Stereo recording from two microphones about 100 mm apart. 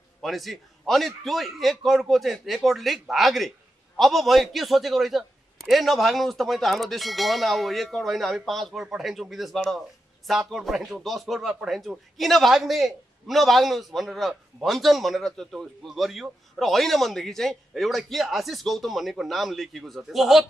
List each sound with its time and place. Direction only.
0.2 s a man's voice: centre (ahead or behind)